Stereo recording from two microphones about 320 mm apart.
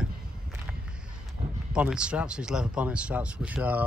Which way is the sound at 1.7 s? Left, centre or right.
Centre.